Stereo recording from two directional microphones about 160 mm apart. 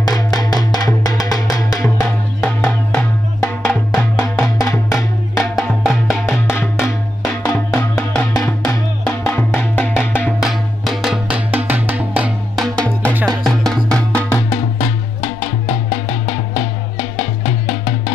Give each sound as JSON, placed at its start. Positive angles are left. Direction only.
{"t": 0.0, "sound": "music", "side_deg": 20}
{"t": 2.0, "sound": "music", "side_deg": 5}
{"t": 5.4, "sound": "music", "side_deg": 0}
{"t": 6.1, "sound": "music", "side_deg": 15}
{"t": 12.5, "sound": "music", "side_deg": 5}
{"t": 17.2, "sound": "music", "side_deg": 35}